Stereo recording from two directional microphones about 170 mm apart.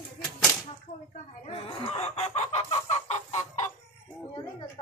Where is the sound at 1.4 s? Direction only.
35° left (ahead or behind).